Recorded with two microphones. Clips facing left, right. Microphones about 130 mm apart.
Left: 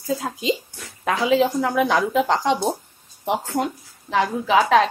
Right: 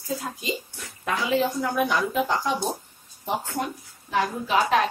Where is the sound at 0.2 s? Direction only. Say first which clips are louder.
Left 7 dB; 90° left.